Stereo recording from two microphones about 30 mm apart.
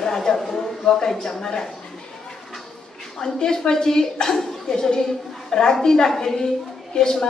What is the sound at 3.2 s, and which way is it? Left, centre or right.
A woman's voice, left.